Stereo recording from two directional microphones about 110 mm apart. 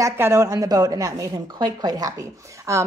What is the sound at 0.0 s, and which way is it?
A woman's voice, 25° right (ahead or behind).